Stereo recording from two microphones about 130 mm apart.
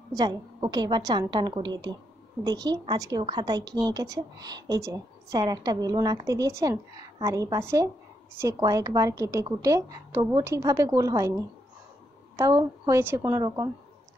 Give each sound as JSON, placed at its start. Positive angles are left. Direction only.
{"t": 0.1, "sound": "a woman's voice", "side_deg": -30}